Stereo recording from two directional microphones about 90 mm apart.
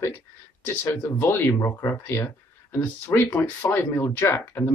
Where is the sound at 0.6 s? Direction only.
25° left (ahead or behind).